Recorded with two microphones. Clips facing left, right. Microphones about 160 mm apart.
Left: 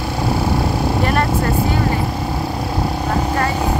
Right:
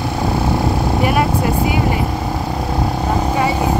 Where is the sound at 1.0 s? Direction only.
10° right (ahead or behind).